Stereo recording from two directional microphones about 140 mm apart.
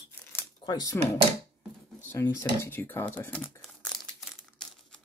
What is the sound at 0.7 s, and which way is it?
Speech, 30° left (ahead or behind).